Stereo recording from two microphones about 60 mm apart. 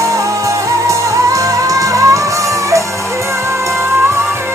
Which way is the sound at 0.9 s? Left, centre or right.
Right.